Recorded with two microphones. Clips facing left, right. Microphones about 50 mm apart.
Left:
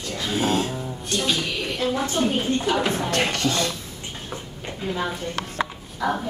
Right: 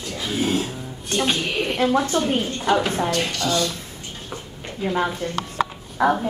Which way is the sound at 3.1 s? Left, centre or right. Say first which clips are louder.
Left 1 dB; left.